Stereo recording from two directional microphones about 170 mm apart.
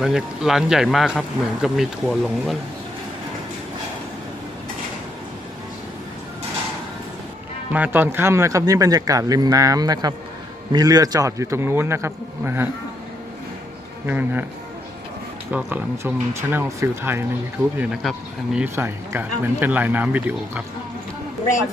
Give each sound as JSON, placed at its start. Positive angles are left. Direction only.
{"t": 0.0, "sound": "a man's voice", "side_deg": -5}
{"t": 7.7, "sound": "speech", "side_deg": -10}
{"t": 14.0, "sound": "speech", "side_deg": -10}
{"t": 15.5, "sound": "speech", "side_deg": -15}